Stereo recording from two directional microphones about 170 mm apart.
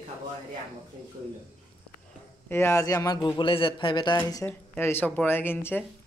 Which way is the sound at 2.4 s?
15° left (ahead or behind).